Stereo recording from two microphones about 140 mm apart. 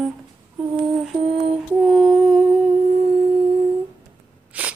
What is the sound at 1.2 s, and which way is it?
Lullaby, 40° right (ahead or behind).